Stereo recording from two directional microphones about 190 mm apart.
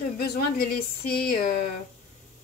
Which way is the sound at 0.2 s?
50° left (ahead or behind).